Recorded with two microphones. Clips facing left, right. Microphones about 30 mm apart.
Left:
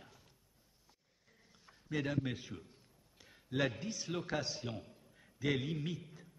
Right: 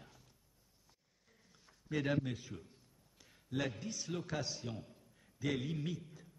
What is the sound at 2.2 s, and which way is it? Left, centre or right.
A man's voice, left.